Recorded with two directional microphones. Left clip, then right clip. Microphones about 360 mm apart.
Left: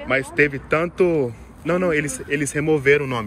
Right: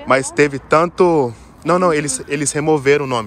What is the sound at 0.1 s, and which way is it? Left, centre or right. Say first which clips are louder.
Speech: right 5 dB; centre.